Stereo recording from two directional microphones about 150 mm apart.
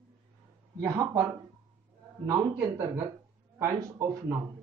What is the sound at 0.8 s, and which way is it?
Speech, 20° right (ahead or behind).